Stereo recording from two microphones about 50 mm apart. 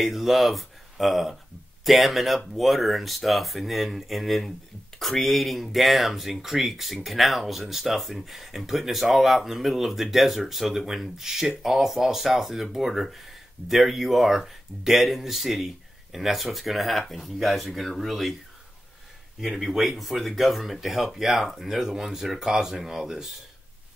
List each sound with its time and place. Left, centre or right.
0.0 s speech: centre
19.4 s speech: centre